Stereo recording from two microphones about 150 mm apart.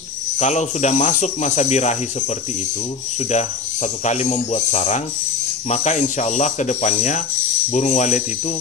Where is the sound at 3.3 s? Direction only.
50° left (ahead or behind).